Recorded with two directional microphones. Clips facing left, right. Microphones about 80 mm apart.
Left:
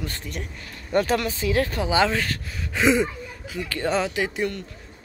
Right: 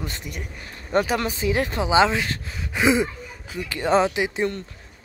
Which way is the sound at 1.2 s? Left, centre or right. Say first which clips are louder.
Even; right.